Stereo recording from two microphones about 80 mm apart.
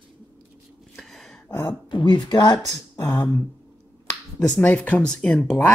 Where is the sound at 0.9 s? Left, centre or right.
Centre.